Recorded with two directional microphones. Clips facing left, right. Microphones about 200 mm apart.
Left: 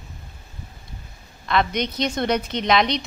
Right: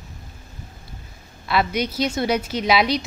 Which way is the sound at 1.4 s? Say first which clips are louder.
Even; 5° right (ahead or behind).